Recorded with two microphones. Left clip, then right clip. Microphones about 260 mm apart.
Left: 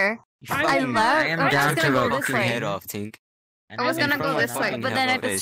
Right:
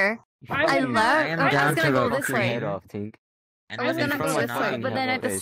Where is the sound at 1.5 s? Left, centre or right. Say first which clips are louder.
Even; centre.